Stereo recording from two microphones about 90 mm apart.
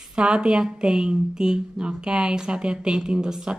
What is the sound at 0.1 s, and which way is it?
A woman's voice, 10° right (ahead or behind).